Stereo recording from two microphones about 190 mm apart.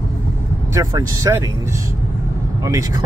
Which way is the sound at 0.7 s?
15° right (ahead or behind).